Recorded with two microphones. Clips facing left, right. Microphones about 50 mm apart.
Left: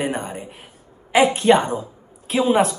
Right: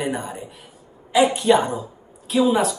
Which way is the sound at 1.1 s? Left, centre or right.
Left.